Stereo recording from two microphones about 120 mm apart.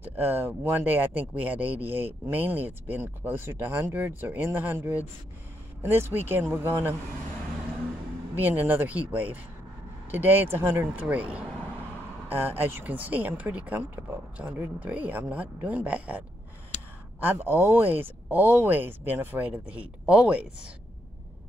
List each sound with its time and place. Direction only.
0.0 s speech: 15° right (ahead or behind)
8.4 s speech: 15° right (ahead or behind)